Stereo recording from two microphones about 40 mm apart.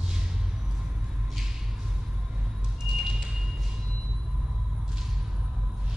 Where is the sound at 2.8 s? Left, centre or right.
Centre.